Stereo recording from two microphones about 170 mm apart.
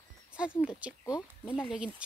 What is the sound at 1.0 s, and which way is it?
Speech, 15° left (ahead or behind).